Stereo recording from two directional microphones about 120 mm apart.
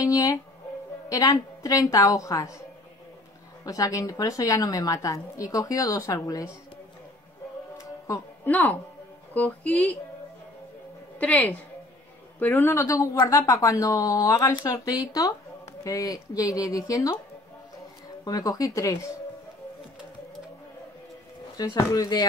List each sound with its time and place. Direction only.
0.0 s music: 30° left (ahead or behind)
1.0 s a woman's voice: 30° left (ahead or behind)
3.6 s a woman's voice: 30° left (ahead or behind)
8.5 s speech: 15° left (ahead or behind)
11.1 s a woman's voice: 10° left (ahead or behind); by 17.2 s 30° left (ahead or behind)
18.2 s a woman's voice: 30° left (ahead or behind)
21.6 s a woman's voice: 25° left (ahead or behind)